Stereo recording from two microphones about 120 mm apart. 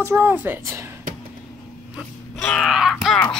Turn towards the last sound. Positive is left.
turn(degrees=0)  # may be behind; listen again after turning